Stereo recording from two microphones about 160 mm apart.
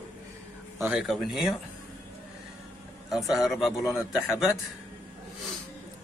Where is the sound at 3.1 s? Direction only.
Centre (ahead or behind).